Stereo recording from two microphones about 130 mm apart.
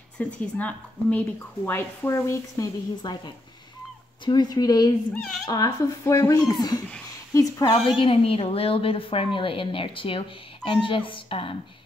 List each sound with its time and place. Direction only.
0.2 s speech: 10° left (ahead or behind)
1.7 s speech: 20° left (ahead or behind)
8.0 s a woman's voice: 45° left (ahead or behind)